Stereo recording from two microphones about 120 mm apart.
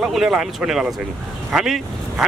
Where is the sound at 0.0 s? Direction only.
5° right (ahead or behind).